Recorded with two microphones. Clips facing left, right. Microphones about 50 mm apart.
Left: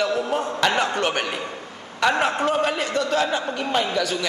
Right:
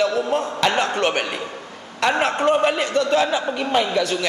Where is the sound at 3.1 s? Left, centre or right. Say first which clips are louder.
Right 3 dB; centre.